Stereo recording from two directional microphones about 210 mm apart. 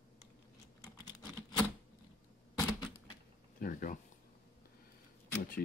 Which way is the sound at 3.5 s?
40° left (ahead or behind).